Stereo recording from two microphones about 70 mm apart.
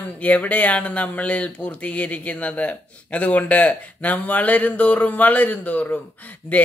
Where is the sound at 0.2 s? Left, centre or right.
Left.